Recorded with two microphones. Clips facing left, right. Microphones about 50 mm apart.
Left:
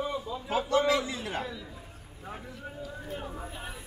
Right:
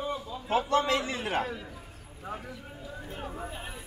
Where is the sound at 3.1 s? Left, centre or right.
Centre.